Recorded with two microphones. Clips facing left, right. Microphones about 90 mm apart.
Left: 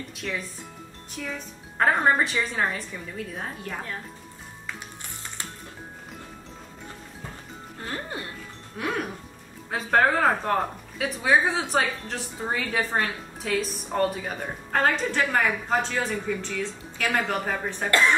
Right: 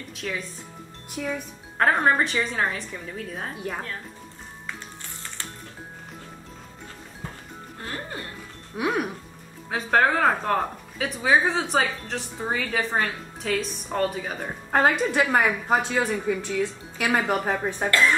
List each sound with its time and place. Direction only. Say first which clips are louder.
0.1 s speech: right 2 dB; centre (ahead or behind)
1.2 s a woman's voice: right 5 dB; 15° right (ahead or behind)
1.8 s speech: right 1 dB; centre (ahead or behind)
7.8 s music: left 1 dB; 20° left (ahead or behind)
8.7 s a woman's voice: right 4 dB; 15° right (ahead or behind)
9.7 s speech: even; centre (ahead or behind)
14.7 s a woman's voice: right 3 dB; 15° right (ahead or behind)